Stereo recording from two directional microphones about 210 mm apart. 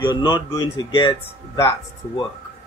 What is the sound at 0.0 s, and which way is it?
Speech, 20° left (ahead or behind).